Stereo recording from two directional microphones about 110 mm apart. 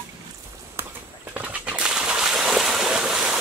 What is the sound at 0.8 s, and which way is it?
Walk, 20° right (ahead or behind).